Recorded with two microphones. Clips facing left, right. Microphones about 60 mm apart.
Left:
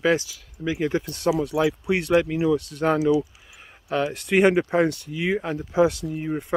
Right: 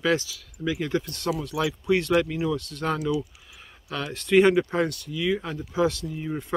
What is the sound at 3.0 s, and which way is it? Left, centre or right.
Speech, centre.